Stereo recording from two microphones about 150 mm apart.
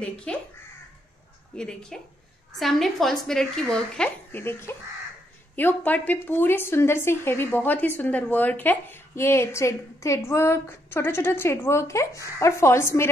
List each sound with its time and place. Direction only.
0.0 s crow: 5° left (ahead or behind)
1.5 s a woman's voice: 5° left (ahead or behind)